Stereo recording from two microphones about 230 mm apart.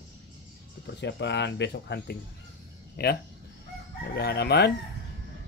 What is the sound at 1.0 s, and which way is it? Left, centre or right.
Speech, left.